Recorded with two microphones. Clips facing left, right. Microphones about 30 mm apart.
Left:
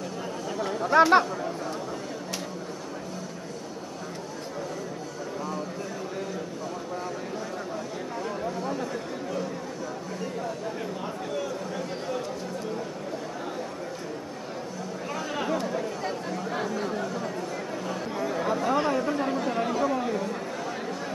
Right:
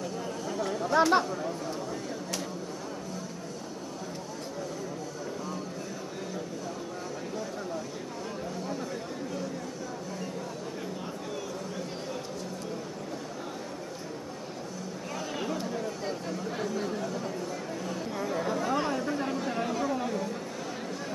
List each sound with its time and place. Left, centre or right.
0.5 s speech: centre
15.3 s chatter: centre